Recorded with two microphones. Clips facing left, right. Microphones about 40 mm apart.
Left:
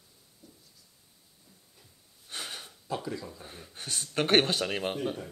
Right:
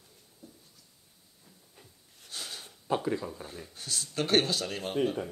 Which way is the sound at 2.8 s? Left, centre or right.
Right.